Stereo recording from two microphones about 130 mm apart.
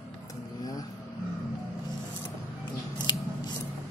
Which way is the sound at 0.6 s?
30° left (ahead or behind).